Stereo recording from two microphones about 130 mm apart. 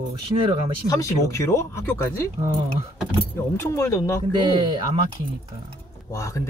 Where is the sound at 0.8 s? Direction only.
25° left (ahead or behind).